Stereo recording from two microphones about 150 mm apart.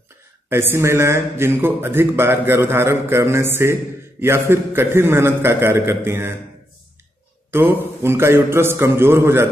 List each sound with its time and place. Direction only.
0.5 s speech: 15° right (ahead or behind)
7.5 s speech: 15° right (ahead or behind)